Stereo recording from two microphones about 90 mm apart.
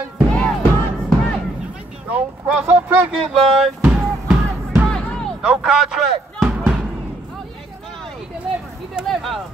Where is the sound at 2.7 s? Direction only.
20° right (ahead or behind).